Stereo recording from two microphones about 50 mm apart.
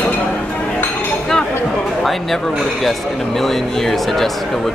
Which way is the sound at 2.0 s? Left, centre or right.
Centre.